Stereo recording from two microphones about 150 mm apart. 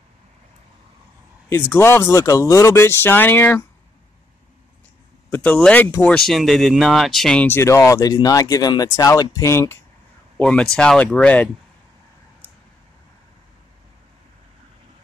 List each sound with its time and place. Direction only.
1.5 s speech: 15° left (ahead or behind)
5.3 s speech: 10° left (ahead or behind)
6.1 s speech: centre (ahead or behind)
7.4 s speech: 15° left (ahead or behind)
10.3 s speech: 5° left (ahead or behind)